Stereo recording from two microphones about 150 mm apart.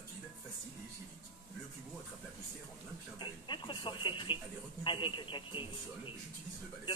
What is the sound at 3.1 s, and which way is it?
Television, 30° left (ahead or behind).